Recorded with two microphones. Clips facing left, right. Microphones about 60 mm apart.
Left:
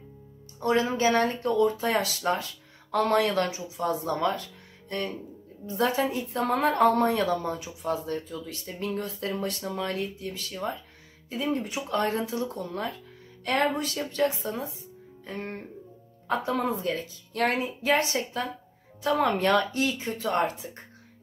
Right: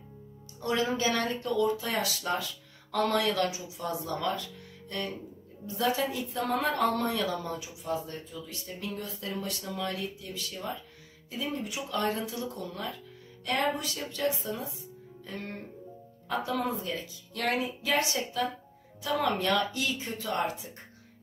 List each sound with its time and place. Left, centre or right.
0.6 s speech: left
7.6 s speech: left